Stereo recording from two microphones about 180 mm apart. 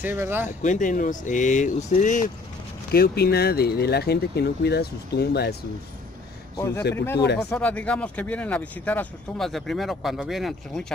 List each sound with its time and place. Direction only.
0.0 s speech: 10° right (ahead or behind)
0.6 s speech: 45° left (ahead or behind)
2.9 s speech: 60° left (ahead or behind)
6.5 s speech: 15° left (ahead or behind)
6.8 s speech: 65° left (ahead or behind)
7.5 s speech: 5° left (ahead or behind)